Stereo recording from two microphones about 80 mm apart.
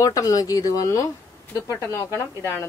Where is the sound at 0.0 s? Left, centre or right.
Left.